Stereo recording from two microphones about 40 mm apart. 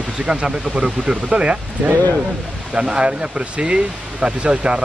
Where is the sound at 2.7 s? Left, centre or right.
Right.